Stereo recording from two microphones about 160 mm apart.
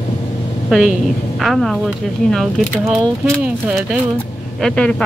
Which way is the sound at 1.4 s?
Centre (ahead or behind).